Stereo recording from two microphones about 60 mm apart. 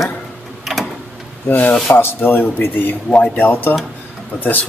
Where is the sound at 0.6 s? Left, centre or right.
Centre.